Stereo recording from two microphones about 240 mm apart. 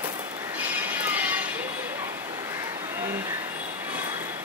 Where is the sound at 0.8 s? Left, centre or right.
Centre.